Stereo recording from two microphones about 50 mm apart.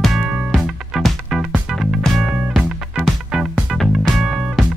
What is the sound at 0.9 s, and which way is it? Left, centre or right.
Music, centre.